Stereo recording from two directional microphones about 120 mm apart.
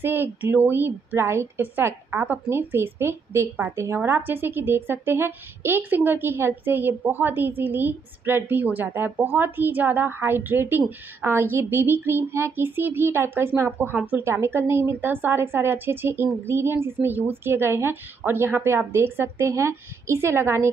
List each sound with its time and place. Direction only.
0.0 s a woman's voice: 20° right (ahead or behind)